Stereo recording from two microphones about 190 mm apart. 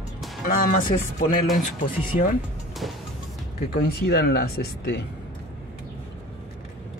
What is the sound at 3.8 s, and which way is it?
Speech, 60° left (ahead or behind).